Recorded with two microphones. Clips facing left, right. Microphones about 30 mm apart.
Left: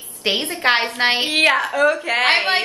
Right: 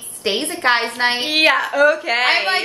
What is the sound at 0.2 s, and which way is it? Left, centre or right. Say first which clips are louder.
A woman's voice: even; centre.